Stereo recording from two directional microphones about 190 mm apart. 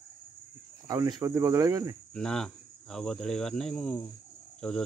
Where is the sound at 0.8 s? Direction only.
20° right (ahead or behind).